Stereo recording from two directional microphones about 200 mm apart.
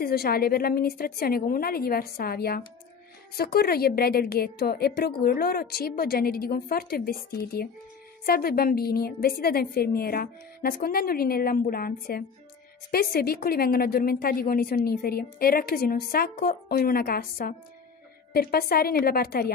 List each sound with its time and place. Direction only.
0.0 s a woman's voice: 50° left (ahead or behind)